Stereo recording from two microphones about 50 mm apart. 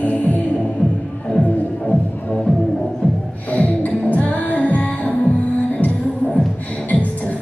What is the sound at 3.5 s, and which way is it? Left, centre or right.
Music, left.